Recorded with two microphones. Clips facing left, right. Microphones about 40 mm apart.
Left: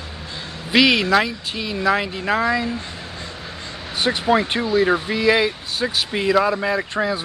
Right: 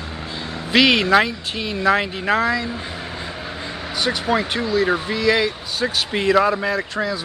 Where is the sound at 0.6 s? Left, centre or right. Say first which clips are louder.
Right 1 dB; centre.